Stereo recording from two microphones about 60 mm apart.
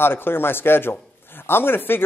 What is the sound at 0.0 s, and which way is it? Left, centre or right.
Speech, left.